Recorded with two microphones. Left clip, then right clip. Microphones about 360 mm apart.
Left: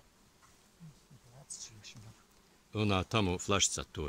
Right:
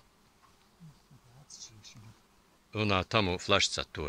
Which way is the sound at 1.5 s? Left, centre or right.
Centre.